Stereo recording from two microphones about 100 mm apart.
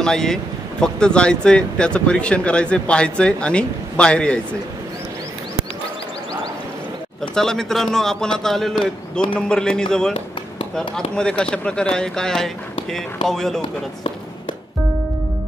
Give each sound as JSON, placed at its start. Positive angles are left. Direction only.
{"t": 0.0, "sound": "speech", "side_deg": 5}
{"t": 7.3, "sound": "a man's voice", "side_deg": 5}
{"t": 11.1, "sound": "a man's voice", "side_deg": 10}